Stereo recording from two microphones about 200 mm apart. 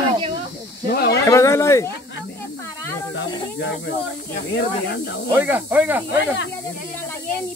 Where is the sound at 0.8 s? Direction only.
50° left (ahead or behind).